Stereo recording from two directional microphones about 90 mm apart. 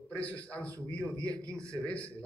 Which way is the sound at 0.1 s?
15° left (ahead or behind).